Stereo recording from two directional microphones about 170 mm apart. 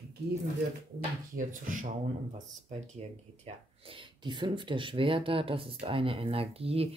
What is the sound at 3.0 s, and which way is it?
Speech, 35° right (ahead or behind).